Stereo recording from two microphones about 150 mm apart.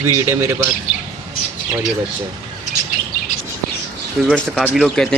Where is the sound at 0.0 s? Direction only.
15° right (ahead or behind).